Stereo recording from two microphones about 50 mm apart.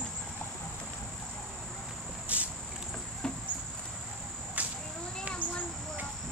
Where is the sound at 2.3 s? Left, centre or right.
Right.